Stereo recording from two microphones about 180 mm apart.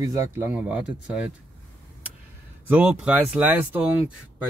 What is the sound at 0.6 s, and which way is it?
Speech, 5° right (ahead or behind).